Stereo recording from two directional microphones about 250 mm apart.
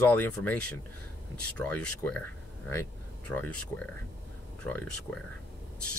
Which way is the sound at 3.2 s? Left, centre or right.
Centre.